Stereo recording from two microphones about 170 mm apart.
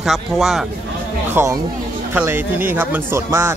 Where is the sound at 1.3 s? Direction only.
15° right (ahead or behind).